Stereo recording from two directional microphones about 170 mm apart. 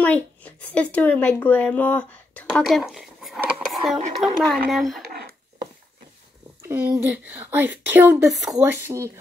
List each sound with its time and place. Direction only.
0.0 s a child's voice: 10° left (ahead or behind)
6.6 s a woman's voice: 10° right (ahead or behind)
8.5 s a woman's voice: 15° right (ahead or behind)